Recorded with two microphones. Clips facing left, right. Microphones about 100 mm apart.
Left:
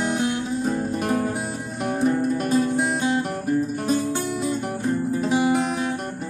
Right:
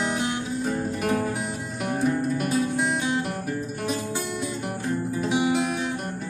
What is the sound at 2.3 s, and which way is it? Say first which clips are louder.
Music: left 3 dB; 35° left (ahead or behind).